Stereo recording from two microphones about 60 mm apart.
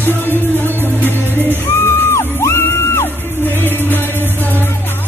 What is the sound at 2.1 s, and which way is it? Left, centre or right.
Music, left.